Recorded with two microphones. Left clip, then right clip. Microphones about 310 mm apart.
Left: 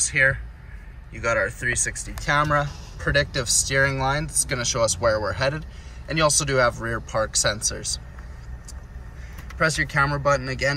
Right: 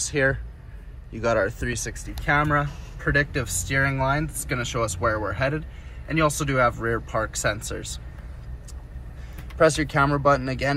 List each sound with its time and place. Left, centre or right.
0.1 s speech: centre
1.6 s speech: centre
9.6 s speech: centre